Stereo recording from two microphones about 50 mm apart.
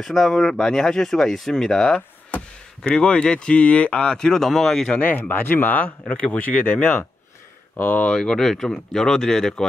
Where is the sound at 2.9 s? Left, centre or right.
Centre.